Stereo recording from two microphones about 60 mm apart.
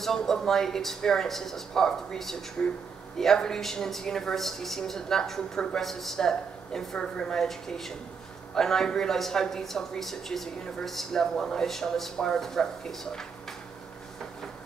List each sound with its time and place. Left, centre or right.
0.0 s speech: centre
2.6 s speech: centre
3.2 s speech: centre